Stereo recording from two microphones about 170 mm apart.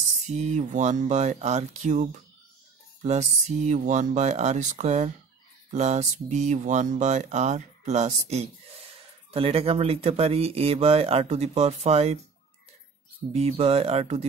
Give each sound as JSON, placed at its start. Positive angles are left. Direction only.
{"t": 0.4, "sound": "speech", "side_deg": -45}
{"t": 13.3, "sound": "speech", "side_deg": -40}